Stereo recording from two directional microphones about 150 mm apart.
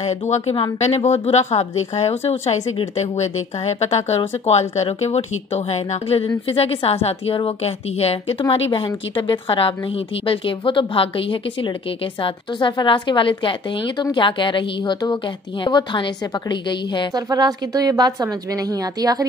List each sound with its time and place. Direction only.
0.0 s a woman's voice: 45° left (ahead or behind)
17.1 s a woman's voice: 25° right (ahead or behind)